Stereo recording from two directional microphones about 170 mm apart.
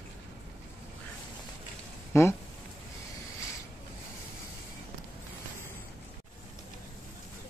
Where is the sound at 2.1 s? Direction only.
15° left (ahead or behind).